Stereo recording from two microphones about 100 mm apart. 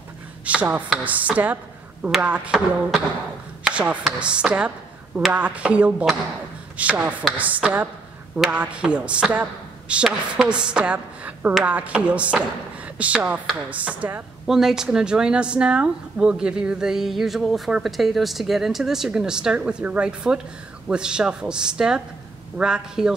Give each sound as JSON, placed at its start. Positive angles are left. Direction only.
{"t": 0.5, "sound": "speech", "side_deg": -15}
{"t": 3.6, "sound": "chopping", "side_deg": -15}
{"t": 4.0, "sound": "speech", "side_deg": -10}
{"t": 14.4, "sound": "speech", "side_deg": -5}